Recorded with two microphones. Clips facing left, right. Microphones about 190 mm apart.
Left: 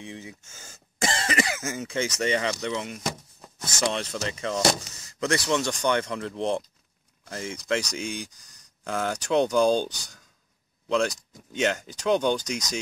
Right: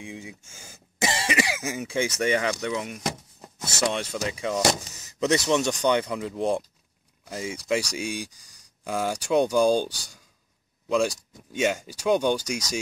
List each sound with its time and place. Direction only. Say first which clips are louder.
0.0 s speech: right 1 dB; 10° right (ahead or behind)
5.0 s speech: right 3 dB; 20° right (ahead or behind)